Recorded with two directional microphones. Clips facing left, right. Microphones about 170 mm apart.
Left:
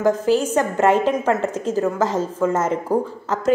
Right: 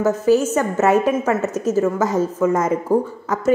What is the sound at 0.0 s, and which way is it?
Speech, 15° left (ahead or behind).